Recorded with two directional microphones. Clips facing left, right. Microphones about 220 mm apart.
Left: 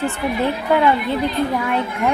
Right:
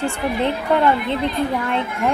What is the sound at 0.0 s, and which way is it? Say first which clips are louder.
A woman's voice: left 1 dB; 5° left (ahead or behind).